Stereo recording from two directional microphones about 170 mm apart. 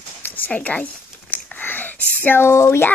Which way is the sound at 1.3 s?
10° left (ahead or behind).